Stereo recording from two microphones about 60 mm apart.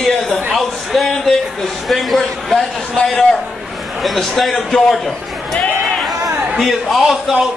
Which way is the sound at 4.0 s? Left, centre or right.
Centre.